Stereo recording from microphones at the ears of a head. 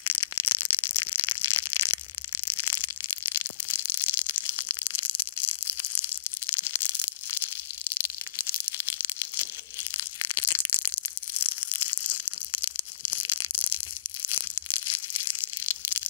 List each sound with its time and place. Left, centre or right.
0.0 s a sound: left
2.4 s crushing: left
11.3 s tearing: left
14.3 s crushing: left